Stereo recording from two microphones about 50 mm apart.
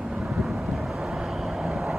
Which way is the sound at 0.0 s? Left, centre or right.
Centre.